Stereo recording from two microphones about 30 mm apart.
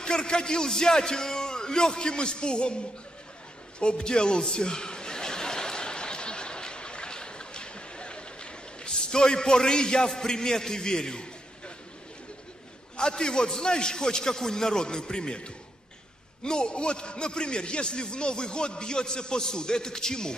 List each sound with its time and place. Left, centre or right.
0.0 s a man's voice: left
3.8 s chuckle: left
9.0 s a man's voice: left
12.9 s a man's voice: left